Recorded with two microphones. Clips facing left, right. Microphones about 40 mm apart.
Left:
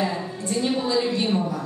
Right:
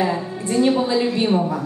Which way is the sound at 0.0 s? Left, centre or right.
Centre.